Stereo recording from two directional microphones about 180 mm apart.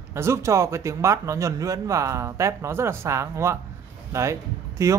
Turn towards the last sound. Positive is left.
turn(degrees=-15)  # may be behind; listen again after turning